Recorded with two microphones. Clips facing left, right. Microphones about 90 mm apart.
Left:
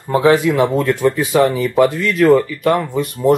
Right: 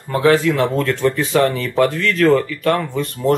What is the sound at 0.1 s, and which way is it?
Speech, 20° left (ahead or behind).